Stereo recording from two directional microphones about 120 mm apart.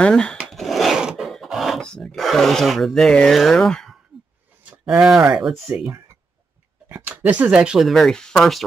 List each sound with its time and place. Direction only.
0.0 s speech: 5° left (ahead or behind)
0.5 s filing: centre (ahead or behind)
4.6 s speech: 10° right (ahead or behind)
5.7 s speech: 20° right (ahead or behind)
6.9 s speech: 15° right (ahead or behind); by 8.6 s 5° left (ahead or behind)